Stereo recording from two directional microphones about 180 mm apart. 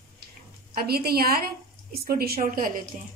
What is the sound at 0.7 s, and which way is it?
A woman's voice, 60° right (ahead or behind).